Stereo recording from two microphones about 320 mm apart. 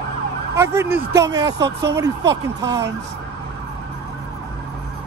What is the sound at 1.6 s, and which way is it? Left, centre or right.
Speech, right.